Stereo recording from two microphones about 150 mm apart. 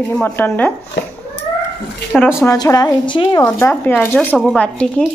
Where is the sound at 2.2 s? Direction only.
15° left (ahead or behind); by 3.4 s 35° left (ahead or behind).